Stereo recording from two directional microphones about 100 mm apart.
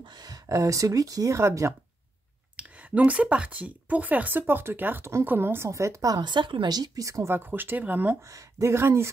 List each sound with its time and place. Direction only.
0.0 s speech: 40° right (ahead or behind)
2.5 s speech: 10° right (ahead or behind); by 7.3 s 35° right (ahead or behind)
7.3 s speech: 20° right (ahead or behind)
8.2 s speech: 35° right (ahead or behind)